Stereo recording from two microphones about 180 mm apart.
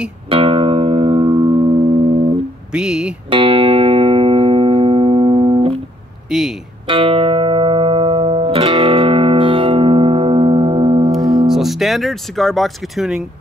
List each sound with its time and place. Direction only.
0.3 s music: 30° right (ahead or behind)
2.7 s a sound: 5° right (ahead or behind)
3.3 s music: 30° right (ahead or behind)
6.3 s music: 5° right (ahead or behind)
6.9 s music: 30° right (ahead or behind)
11.1 s music: centre (ahead or behind)